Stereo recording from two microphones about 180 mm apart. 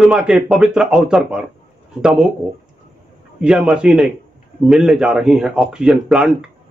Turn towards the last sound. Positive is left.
turn(degrees=-5)  # may be behind; listen again after turning